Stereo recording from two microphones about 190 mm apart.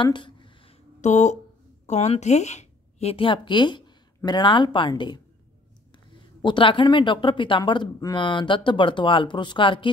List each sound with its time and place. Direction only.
0.0 s a sound: 25° left (ahead or behind)
1.9 s a woman's voice: 35° left (ahead or behind)
6.4 s speech: 25° left (ahead or behind)